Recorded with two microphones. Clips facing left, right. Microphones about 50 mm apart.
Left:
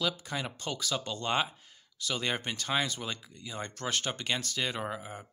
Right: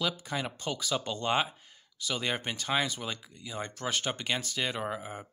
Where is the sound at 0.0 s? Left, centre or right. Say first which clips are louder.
Right 1 dB; centre.